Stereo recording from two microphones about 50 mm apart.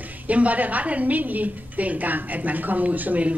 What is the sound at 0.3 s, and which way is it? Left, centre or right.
A woman's voice, right.